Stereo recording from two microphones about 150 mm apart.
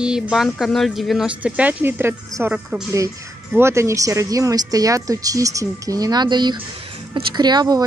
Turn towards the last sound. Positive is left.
turn(degrees=-25)  # may be behind; listen again after turning